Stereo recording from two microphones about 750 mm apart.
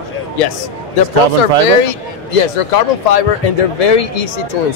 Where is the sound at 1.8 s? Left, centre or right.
Left.